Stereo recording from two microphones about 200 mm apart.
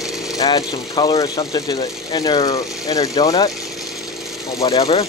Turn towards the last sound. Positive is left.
turn(degrees=20)  # may be behind; listen again after turning